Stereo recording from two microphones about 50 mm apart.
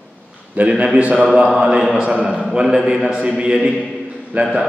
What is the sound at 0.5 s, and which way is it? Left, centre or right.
A man's voice, right.